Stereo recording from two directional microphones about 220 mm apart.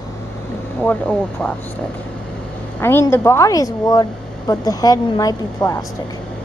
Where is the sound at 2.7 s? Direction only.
10° left (ahead or behind).